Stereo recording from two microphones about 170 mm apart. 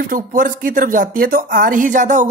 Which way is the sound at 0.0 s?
55° right (ahead or behind).